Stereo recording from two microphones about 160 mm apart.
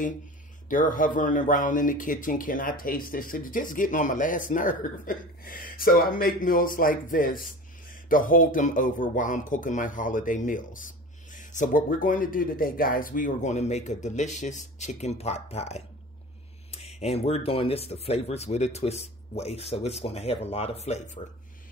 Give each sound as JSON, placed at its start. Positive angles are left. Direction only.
{"t": 0.7, "sound": "speech", "side_deg": 55}